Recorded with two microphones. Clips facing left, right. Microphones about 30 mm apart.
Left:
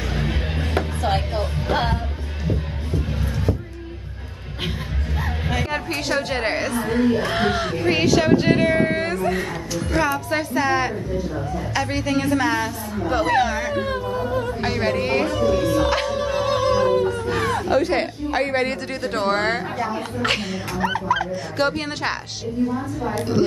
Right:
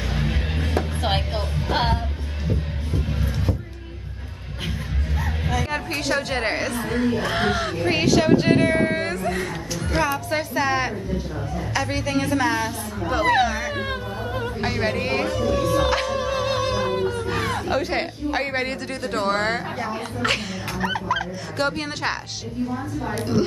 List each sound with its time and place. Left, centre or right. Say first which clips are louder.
0.1 s music: even; centre
1.0 s music: left 2 dB; right
2.4 s music: left 2 dB; centre
5.7 s a woman's voice: left 1 dB; centre
13.7 s a sound: left 4 dB; centre
14.6 s a woman's voice: even; centre
15.8 s music: left 1 dB; centre
17.3 s a woman's voice: left 3 dB; centre
22.6 s a woman's voice: left 4 dB; centre